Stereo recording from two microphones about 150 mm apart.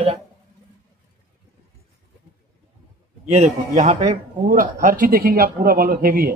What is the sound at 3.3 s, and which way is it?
Speech, 45° right (ahead or behind).